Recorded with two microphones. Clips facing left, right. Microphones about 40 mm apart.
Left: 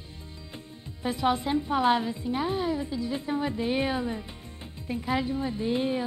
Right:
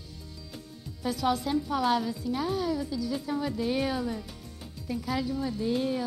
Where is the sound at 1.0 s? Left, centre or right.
Left.